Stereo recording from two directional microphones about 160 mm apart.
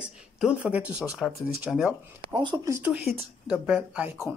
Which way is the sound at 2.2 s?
30° right (ahead or behind).